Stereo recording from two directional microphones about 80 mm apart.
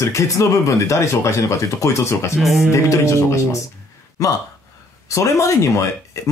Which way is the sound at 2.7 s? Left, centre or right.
Left.